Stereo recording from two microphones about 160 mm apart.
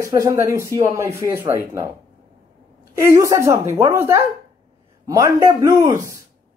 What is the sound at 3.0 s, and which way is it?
A woman's voice, 20° right (ahead or behind).